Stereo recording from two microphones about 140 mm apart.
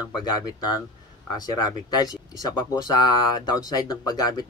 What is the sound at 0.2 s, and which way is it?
Speech, 30° left (ahead or behind).